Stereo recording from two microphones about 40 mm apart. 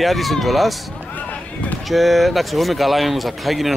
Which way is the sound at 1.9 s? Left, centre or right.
Centre.